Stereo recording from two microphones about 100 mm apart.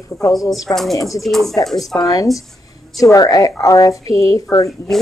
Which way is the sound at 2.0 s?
40° left (ahead or behind).